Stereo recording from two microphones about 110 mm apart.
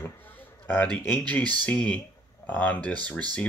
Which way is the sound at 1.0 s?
15° left (ahead or behind).